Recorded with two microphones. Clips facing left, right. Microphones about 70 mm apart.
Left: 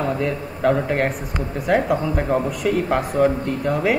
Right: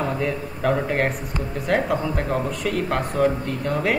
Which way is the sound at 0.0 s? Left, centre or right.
Centre.